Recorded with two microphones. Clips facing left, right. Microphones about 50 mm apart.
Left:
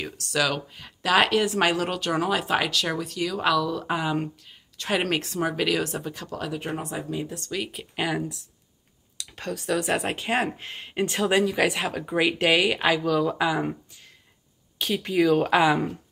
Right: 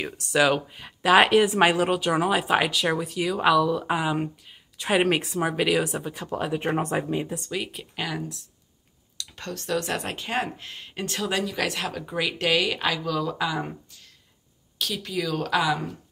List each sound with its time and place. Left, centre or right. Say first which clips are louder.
0.0 s speech: right 4 dB; centre
6.2 s speech: right 4 dB; right
6.8 s speech: right 5 dB; right
7.2 s speech: right 1 dB; centre
7.6 s speech: even; centre
7.9 s speech: left 5 dB; centre